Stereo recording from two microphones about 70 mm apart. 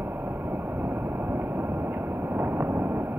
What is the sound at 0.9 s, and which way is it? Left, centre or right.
Boat, right.